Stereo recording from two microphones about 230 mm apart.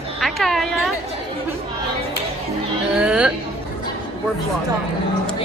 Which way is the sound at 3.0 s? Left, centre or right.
Centre.